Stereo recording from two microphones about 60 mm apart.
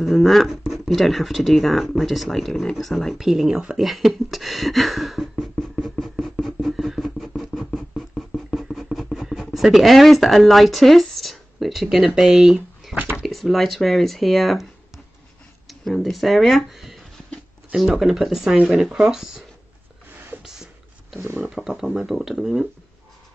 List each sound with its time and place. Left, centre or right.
0.0 s speech: centre
3.2 s speech: centre
5.8 s a sound: centre
9.4 s speech: centre
12.9 s a sound: right
13.2 s speech: centre
15.8 s speech: centre
21.4 s speech: centre